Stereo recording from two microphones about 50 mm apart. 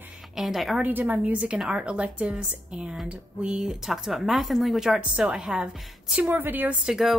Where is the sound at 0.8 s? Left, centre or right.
Right.